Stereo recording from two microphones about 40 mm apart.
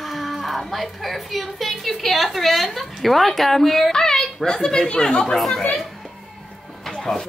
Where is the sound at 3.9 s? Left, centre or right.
Centre.